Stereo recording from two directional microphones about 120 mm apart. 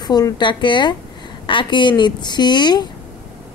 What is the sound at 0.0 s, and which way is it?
Speech, 35° left (ahead or behind).